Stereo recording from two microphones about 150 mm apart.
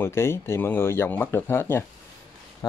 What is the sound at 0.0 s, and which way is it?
Speech, 15° left (ahead or behind).